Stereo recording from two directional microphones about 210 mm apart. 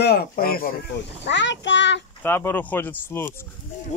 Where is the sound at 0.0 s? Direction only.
50° left (ahead or behind).